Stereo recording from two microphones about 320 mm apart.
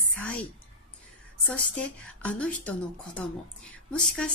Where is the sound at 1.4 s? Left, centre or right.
Centre.